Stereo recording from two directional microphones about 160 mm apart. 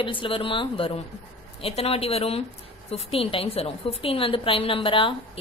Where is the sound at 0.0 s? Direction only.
30° left (ahead or behind).